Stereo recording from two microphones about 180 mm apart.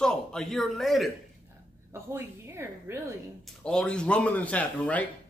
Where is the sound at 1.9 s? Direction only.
15° right (ahead or behind).